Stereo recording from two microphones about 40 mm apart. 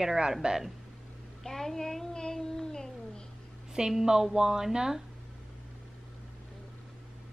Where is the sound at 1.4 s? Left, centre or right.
Centre.